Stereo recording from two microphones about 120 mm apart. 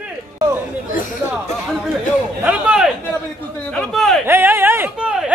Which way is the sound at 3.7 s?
5° left (ahead or behind).